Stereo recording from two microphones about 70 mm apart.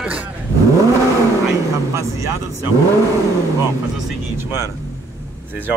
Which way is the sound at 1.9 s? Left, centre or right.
Right.